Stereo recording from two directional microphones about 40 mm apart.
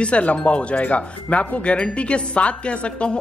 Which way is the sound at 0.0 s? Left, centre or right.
Left.